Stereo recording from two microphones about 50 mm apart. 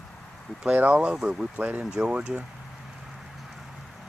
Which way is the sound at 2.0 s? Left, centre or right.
Centre.